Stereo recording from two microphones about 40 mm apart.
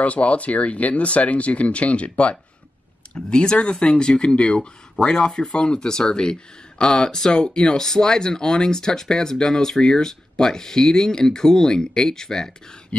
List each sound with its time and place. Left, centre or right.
0.0 s speech: left; by 12.5 s centre